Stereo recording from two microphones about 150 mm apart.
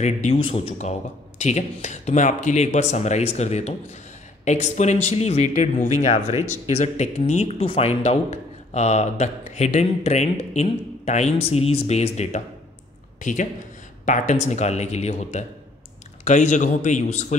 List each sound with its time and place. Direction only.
0.0 s speech: 40° left (ahead or behind)
1.4 s speech: 50° left (ahead or behind)